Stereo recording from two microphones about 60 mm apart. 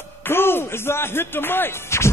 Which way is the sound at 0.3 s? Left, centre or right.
Left.